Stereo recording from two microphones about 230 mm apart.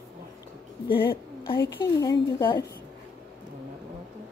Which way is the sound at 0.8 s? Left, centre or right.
Left.